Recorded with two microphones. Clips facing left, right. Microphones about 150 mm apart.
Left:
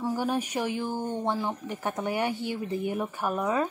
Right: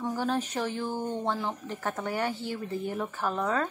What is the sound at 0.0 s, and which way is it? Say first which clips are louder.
Speech: left 1 dB; 15° left (ahead or behind).